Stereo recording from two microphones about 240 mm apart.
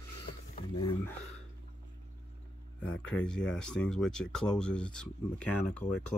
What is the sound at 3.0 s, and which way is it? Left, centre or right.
Speech, centre.